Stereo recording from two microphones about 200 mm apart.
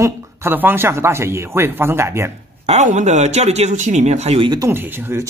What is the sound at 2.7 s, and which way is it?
Speech, 35° right (ahead or behind).